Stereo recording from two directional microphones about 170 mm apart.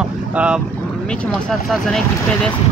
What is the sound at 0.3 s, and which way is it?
Speech, 5° right (ahead or behind).